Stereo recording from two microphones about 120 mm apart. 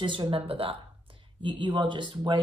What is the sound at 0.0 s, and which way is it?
Speech, 45° right (ahead or behind).